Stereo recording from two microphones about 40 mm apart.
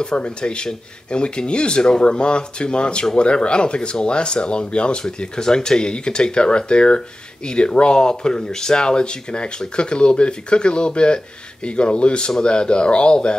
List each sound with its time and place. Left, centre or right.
0.0 s speech: left